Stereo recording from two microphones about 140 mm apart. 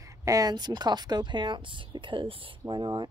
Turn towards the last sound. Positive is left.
turn(degrees=-30)  # may be behind; listen again after turning